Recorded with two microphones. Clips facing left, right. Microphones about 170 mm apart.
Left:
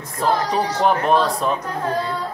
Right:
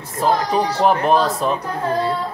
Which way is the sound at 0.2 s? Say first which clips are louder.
Right 2 dB; centre (ahead or behind).